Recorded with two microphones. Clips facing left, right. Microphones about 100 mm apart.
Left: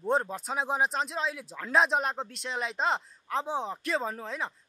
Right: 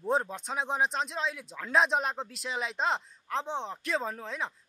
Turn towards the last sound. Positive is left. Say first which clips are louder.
# left 1 dB
turn(degrees=0)  # may be behind; listen again after turning